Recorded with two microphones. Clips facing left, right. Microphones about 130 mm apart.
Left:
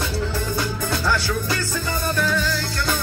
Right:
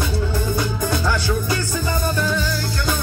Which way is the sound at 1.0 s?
20° right (ahead or behind).